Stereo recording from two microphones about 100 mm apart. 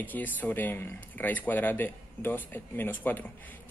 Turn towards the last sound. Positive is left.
turn(degrees=20)  # may be behind; listen again after turning